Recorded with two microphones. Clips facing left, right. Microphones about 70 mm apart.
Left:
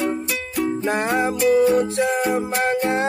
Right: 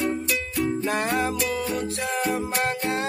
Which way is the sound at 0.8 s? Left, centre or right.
Left.